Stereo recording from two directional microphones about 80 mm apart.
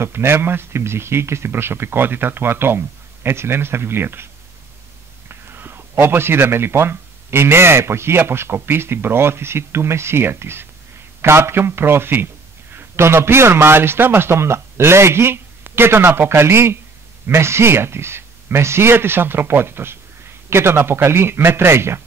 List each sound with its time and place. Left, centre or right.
0.0 s speech: right
5.3 s speech: right